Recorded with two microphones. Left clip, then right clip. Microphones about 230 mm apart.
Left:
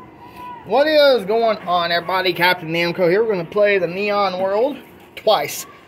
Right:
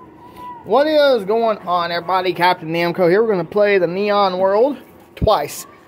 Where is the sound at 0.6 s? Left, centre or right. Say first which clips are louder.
Even; centre.